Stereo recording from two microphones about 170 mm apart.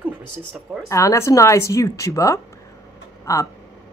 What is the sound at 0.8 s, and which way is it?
Speech, 20° left (ahead or behind).